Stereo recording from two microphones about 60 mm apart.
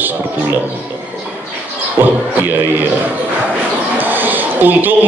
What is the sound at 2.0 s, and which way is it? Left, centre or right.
Speech, right.